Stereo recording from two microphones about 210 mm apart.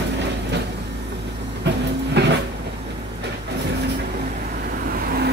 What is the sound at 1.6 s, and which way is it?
Train, 55° right (ahead or behind).